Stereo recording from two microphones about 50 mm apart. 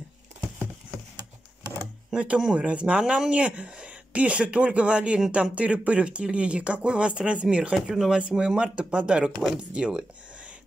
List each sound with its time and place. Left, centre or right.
2.1 s speech: centre
7.7 s speech: centre
8.3 s speech: centre